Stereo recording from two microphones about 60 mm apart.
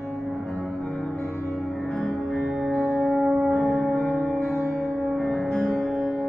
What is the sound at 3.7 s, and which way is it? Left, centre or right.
Music, centre.